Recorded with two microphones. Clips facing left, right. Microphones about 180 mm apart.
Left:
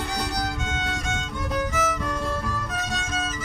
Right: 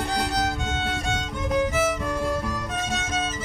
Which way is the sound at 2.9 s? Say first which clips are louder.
Right 2 dB; 20° right (ahead or behind).